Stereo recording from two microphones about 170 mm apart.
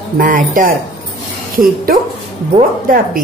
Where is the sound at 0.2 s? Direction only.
50° right (ahead or behind).